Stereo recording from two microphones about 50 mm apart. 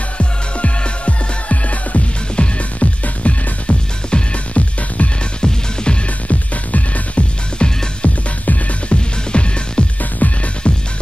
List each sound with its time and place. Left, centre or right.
0.2 s music: left
10.2 s music: left